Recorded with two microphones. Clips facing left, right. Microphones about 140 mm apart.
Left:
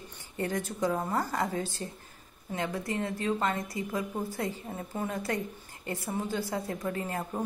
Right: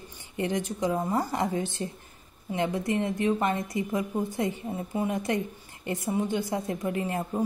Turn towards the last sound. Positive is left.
turn(degrees=-20)  # may be behind; listen again after turning